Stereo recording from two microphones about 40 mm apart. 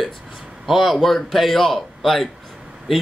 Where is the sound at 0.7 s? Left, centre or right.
Centre.